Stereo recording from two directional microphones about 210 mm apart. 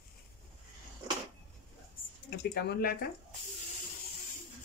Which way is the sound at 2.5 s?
50° left (ahead or behind).